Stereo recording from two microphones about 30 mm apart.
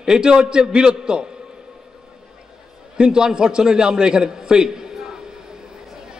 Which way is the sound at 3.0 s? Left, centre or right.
Right.